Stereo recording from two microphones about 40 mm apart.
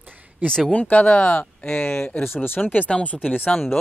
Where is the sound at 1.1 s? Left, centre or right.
Left.